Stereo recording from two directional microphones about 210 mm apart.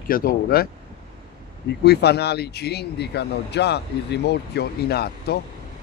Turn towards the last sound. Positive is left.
turn(degrees=50)  # may be behind; listen again after turning